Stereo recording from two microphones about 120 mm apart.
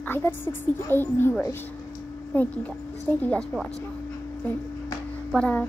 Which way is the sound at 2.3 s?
15° left (ahead or behind).